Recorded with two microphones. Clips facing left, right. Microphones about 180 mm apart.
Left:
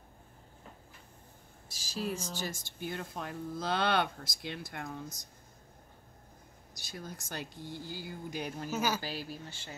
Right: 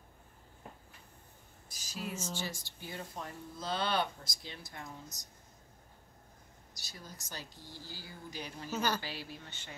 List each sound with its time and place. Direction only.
1.8 s speech: 30° left (ahead or behind)
2.8 s speech: 60° left (ahead or behind)
6.7 s speech: 55° left (ahead or behind)
8.6 s a woman's voice: 10° left (ahead or behind)
9.0 s speech: 40° left (ahead or behind)